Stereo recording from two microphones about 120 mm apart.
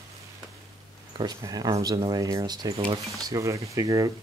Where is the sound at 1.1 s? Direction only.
35° right (ahead or behind).